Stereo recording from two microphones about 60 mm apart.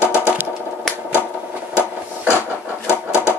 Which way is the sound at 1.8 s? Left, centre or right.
Left.